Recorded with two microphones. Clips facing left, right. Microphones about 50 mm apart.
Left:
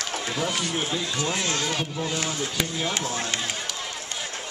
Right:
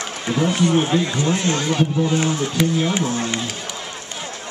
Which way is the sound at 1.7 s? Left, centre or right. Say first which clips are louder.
Right 9 dB; centre.